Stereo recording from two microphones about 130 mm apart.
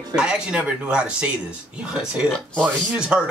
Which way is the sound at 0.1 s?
5° right (ahead or behind).